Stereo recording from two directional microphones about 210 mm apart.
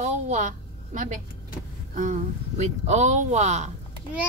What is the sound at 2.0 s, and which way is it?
Speech, 35° right (ahead or behind).